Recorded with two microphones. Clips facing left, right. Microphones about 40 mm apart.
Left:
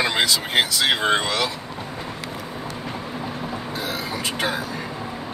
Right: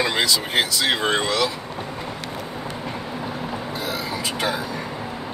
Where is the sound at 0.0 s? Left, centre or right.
Left.